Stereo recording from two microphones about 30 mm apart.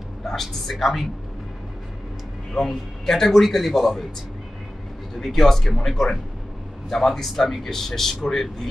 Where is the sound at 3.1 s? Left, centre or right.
Centre.